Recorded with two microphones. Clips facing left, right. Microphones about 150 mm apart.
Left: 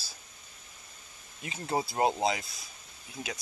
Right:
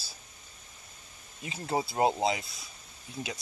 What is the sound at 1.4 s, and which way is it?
Speech, 25° right (ahead or behind).